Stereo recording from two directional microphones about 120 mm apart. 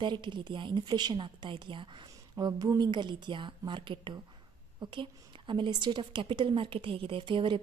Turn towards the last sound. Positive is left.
turn(degrees=-40)  # may be behind; listen again after turning